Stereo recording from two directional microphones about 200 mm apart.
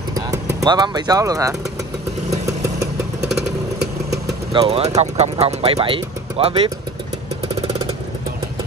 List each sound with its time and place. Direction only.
0.1 s vehicle: 15° right (ahead or behind)
4.5 s speech: 25° right (ahead or behind)